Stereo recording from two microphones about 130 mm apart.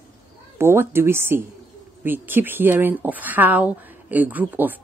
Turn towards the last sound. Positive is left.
turn(degrees=-15)  # may be behind; listen again after turning